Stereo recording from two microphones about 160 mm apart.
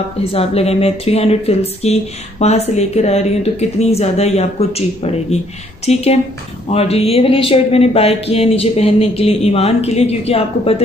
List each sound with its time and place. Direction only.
0.2 s speech: 35° left (ahead or behind)